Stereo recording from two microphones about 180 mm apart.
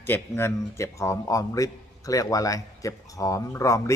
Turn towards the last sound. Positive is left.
turn(degrees=15)  # may be behind; listen again after turning